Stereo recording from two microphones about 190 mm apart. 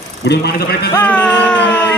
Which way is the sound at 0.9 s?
5° left (ahead or behind).